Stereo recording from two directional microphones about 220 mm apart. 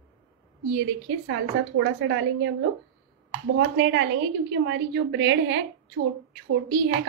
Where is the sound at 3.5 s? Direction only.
55° right (ahead or behind).